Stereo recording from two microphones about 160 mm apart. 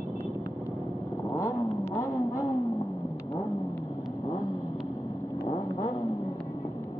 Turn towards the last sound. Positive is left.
turn(degrees=45)  # may be behind; listen again after turning